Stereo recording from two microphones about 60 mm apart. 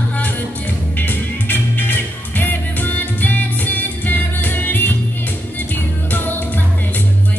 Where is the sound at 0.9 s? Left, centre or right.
Left.